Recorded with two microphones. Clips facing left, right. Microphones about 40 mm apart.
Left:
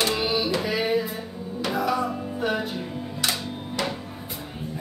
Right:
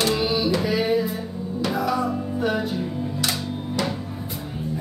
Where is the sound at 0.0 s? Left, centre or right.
Left.